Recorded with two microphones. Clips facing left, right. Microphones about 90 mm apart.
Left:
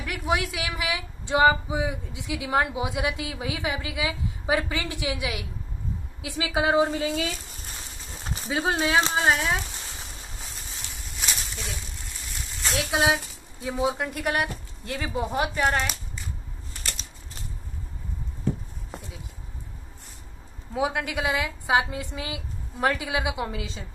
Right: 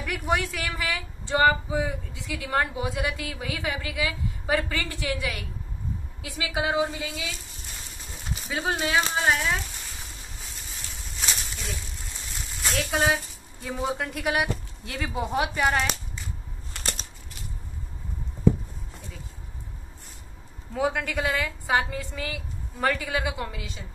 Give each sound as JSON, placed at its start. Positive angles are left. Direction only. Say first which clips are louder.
{"t": 0.0, "sound": "a woman's voice", "louder": "even", "side_deg": 0}
{"t": 8.5, "sound": "a woman's voice", "louder": "left 2 dB", "side_deg": 25}
{"t": 12.6, "sound": "a woman's voice", "louder": "left 1 dB", "side_deg": 5}
{"t": 16.8, "sound": "a sound", "louder": "right 4 dB", "side_deg": -75}
{"t": 20.7, "sound": "speech", "louder": "even", "side_deg": 5}